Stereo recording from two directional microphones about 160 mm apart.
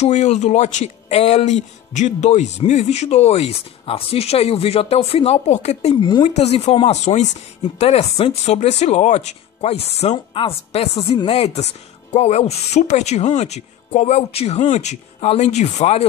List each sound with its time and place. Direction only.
0.0 s speech: 45° left (ahead or behind)
5.9 s speech: 30° left (ahead or behind)
6.2 s a woman's voice: 40° left (ahead or behind)